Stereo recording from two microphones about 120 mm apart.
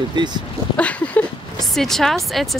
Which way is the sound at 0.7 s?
10° left (ahead or behind).